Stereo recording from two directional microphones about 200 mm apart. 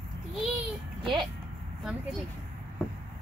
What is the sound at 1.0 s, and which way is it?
Speech, 25° right (ahead or behind).